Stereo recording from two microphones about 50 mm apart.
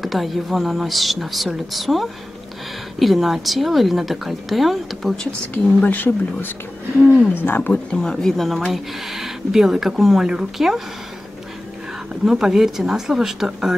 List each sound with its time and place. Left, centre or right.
0.0 s a woman's voice: centre
5.5 s speech: left
7.7 s speech: centre
12.3 s speech: centre